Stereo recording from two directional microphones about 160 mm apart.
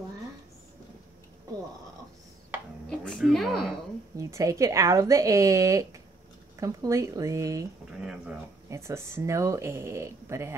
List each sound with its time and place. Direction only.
3.1 s a woman's voice: centre (ahead or behind)
4.2 s speech: 20° right (ahead or behind)
8.0 s speech: 5° right (ahead or behind)
8.6 s speech: 15° right (ahead or behind)